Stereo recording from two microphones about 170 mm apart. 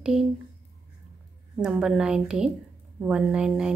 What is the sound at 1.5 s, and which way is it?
A woman's voice, 5° right (ahead or behind).